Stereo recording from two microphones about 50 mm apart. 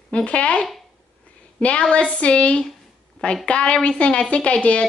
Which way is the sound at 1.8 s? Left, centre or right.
Left.